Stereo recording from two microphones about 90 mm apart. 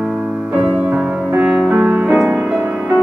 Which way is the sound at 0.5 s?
15° right (ahead or behind).